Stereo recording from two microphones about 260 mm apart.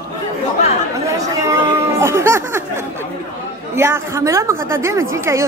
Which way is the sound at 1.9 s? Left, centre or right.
Centre.